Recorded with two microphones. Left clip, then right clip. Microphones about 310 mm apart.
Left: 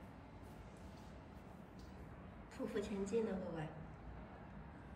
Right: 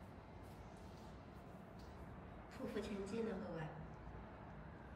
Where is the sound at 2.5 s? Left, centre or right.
Centre.